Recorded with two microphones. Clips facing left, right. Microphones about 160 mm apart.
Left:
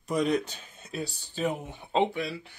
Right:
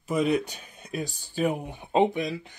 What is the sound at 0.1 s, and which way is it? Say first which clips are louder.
Speech: right 2 dB; 5° right (ahead or behind).